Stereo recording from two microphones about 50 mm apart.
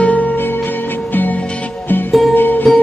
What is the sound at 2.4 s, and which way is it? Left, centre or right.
Music, left.